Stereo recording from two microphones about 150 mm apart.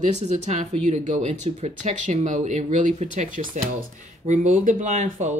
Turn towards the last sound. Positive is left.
turn(degrees=-50)  # may be behind; listen again after turning